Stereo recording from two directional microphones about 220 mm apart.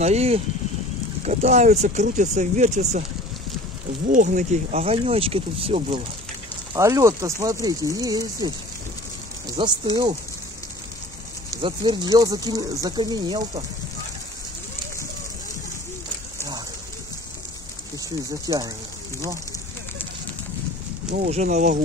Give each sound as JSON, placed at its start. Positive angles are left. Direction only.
{"t": 0.0, "sound": "speech", "side_deg": -30}
{"t": 4.1, "sound": "speech", "side_deg": -35}
{"t": 6.7, "sound": "speech", "side_deg": -15}
{"t": 9.6, "sound": "speech", "side_deg": -20}
{"t": 11.5, "sound": "speech", "side_deg": -20}
{"t": 18.5, "sound": "speech", "side_deg": -20}
{"t": 21.1, "sound": "speech", "side_deg": -35}